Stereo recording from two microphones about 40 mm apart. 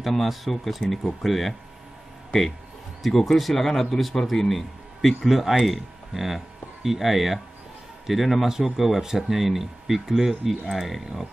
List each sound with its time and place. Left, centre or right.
0.0 s speech: centre
3.0 s speech: centre